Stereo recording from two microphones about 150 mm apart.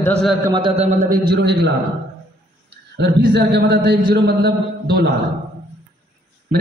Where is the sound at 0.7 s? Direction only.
45° right (ahead or behind).